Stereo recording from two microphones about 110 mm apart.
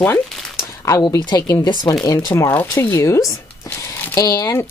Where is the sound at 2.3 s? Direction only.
20° left (ahead or behind).